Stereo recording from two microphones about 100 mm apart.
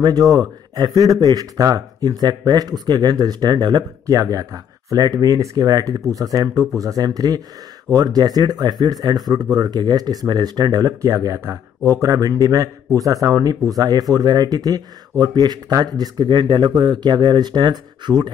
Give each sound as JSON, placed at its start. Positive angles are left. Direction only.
{"t": 0.0, "sound": "a man's voice", "side_deg": -40}